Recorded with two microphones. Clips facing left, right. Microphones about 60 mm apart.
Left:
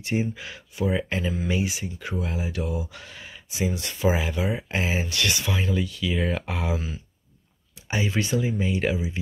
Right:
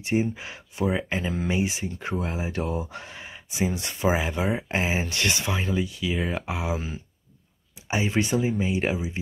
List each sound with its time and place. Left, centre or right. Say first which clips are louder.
0.0 s speech: right 2 dB; right
1.5 s speech: right 1 dB; right
6.2 s speech: left 1 dB; centre
7.9 s speech: right 1 dB; right